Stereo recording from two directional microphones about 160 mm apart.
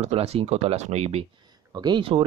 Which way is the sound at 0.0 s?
40° right (ahead or behind).